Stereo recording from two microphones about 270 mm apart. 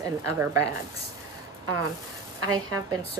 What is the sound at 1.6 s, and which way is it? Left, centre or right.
Speech, right.